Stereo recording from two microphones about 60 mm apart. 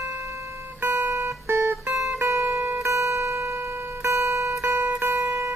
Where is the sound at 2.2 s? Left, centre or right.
Right.